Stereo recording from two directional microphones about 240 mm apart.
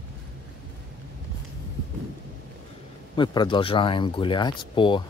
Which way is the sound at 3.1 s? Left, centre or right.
Centre.